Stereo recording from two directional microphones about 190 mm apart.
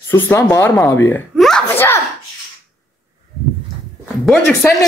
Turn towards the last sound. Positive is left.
turn(degrees=15)  # may be behind; listen again after turning